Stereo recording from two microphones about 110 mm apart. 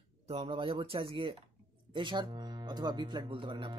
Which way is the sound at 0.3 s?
55° right (ahead or behind).